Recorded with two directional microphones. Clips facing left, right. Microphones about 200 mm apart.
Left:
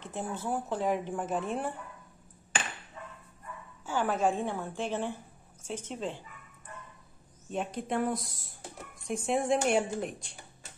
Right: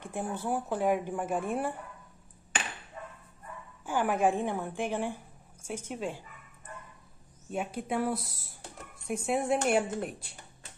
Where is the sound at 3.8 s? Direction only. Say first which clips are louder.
Right 1 dB; 15° right (ahead or behind).